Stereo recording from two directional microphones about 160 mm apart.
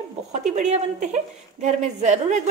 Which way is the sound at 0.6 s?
50° right (ahead or behind).